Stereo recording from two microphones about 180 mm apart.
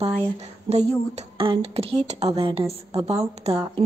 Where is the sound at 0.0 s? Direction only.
35° right (ahead or behind).